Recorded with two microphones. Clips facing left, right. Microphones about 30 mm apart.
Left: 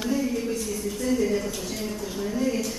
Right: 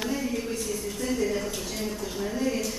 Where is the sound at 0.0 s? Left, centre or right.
Centre.